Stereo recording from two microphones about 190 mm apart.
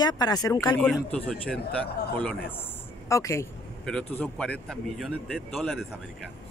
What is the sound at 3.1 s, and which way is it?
Speech, 15° left (ahead or behind).